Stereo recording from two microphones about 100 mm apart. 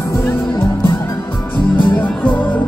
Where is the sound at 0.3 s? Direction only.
25° left (ahead or behind).